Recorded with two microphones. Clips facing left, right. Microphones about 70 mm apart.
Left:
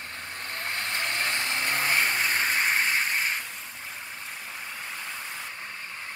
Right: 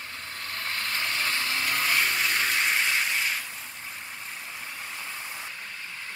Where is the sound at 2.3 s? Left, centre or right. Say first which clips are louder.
Left 1 dB; left.